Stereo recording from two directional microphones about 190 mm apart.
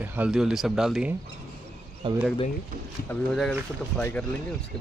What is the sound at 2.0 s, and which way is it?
Speech, 25° right (ahead or behind).